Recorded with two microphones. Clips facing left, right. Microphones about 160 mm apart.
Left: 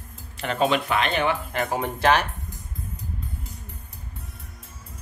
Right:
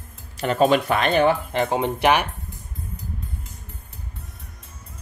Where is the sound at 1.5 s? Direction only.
25° right (ahead or behind).